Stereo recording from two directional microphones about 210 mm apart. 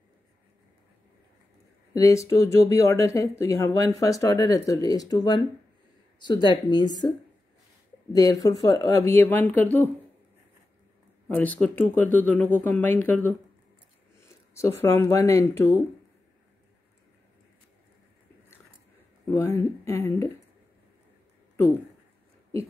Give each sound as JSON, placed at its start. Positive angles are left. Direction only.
{"t": 2.0, "sound": "speech", "side_deg": 15}
{"t": 8.1, "sound": "speech", "side_deg": 15}
{"t": 11.2, "sound": "speech", "side_deg": 5}
{"t": 14.5, "sound": "speech", "side_deg": 15}
{"t": 19.2, "sound": "speech", "side_deg": 10}